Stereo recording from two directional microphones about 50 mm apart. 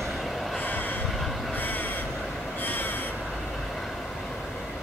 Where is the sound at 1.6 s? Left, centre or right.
Left.